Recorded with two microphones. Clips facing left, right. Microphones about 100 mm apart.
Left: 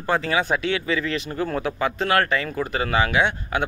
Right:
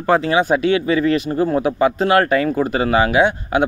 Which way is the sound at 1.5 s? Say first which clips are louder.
Right 8 dB; 20° right (ahead or behind).